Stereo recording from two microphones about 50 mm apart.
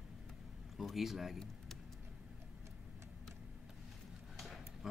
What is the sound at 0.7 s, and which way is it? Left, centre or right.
Speech, centre.